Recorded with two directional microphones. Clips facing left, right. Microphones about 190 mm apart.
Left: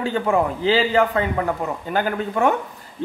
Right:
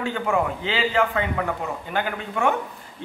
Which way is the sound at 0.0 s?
35° left (ahead or behind).